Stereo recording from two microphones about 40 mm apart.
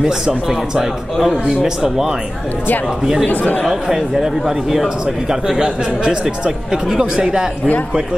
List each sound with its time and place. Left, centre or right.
0.0 s a man's voice: centre
3.3 s speech: left
3.6 s a man's voice: centre
6.7 s a man's voice: centre